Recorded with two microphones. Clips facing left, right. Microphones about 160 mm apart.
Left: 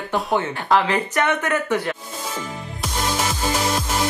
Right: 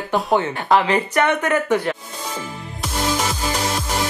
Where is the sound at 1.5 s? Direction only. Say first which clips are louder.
Right 3 dB; 15° right (ahead or behind).